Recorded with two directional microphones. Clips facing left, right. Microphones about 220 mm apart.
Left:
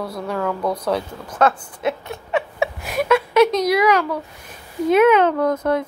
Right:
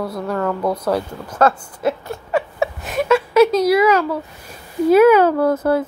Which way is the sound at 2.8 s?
5° left (ahead or behind).